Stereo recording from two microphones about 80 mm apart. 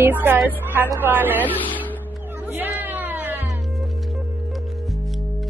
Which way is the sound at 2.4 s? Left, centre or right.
Right.